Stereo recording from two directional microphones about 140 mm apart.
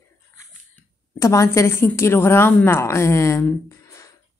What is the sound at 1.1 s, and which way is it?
A woman's voice, 20° left (ahead or behind).